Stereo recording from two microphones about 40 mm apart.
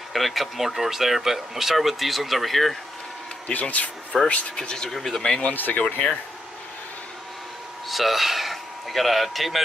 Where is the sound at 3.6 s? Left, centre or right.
Left.